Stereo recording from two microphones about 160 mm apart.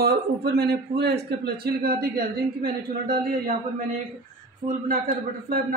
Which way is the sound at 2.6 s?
65° right (ahead or behind).